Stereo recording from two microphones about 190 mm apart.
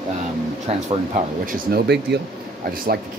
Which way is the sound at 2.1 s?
65° right (ahead or behind).